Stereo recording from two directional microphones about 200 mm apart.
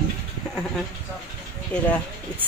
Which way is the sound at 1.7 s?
5° left (ahead or behind).